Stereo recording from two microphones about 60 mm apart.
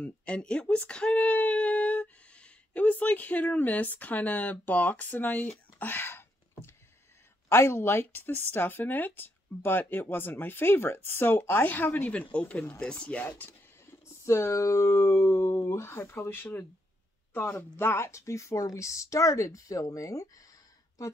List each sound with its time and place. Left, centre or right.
0.0 s speech: centre; by 12.1 s left
12.1 s speech: left
14.0 s speech: left